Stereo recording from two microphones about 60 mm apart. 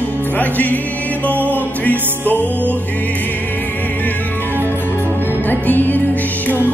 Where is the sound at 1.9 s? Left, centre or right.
Left.